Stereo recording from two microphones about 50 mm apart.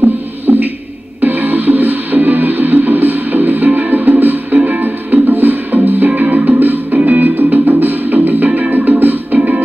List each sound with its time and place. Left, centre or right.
0.5 s music: right